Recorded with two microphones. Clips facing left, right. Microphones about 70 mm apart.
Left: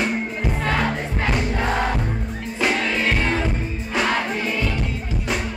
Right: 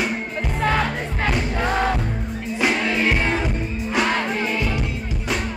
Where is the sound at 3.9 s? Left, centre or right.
Centre.